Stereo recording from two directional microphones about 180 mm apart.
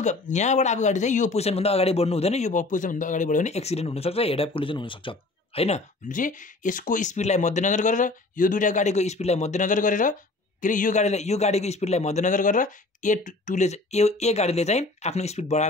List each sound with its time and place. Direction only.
0.0 s speech: 40° left (ahead or behind)